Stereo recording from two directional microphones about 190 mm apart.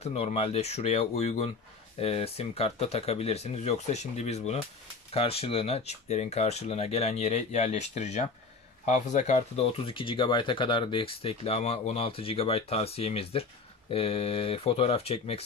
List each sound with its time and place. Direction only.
0.0 s speech: 30° left (ahead or behind)